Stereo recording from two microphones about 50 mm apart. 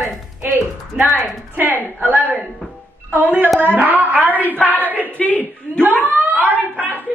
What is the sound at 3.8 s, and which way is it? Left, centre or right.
Speech, right.